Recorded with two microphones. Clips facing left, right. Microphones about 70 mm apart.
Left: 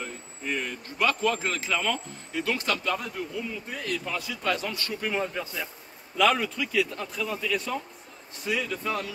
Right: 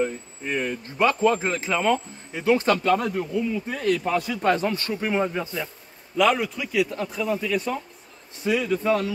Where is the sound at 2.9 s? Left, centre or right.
Right.